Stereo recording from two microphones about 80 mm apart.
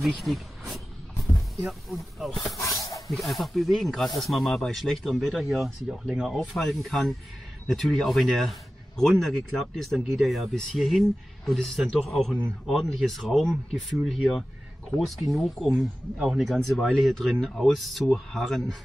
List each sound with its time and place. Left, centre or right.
0.0 s speech: centre
2.5 s snake: left
3.1 s speech: centre
5.9 s speech: centre
6.5 s speech: centre